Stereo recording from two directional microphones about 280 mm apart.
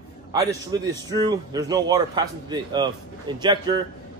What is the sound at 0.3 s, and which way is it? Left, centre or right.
A man's voice, centre.